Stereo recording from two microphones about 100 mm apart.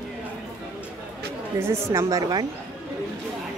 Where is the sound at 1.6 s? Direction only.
25° right (ahead or behind).